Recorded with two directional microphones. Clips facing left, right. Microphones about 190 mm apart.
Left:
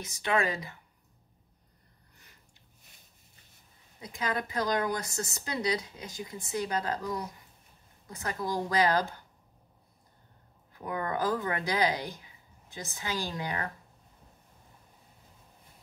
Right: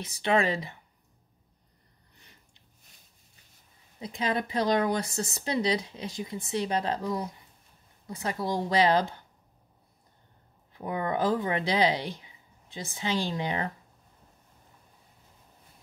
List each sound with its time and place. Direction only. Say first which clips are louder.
0.0 s a woman's voice: right 3 dB; 30° right (ahead or behind)
4.0 s a woman's voice: right 4 dB; 25° right (ahead or behind)
8.5 s a woman's voice: right 3 dB; 25° right (ahead or behind)
10.7 s a woman's voice: right 3 dB; 20° right (ahead or behind)